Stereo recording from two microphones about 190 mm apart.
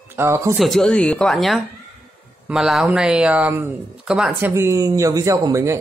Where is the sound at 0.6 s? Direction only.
Centre (ahead or behind).